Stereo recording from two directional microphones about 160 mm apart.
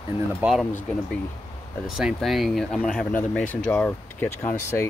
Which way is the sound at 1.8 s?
Centre (ahead or behind).